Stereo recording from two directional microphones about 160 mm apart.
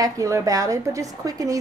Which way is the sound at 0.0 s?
20° right (ahead or behind).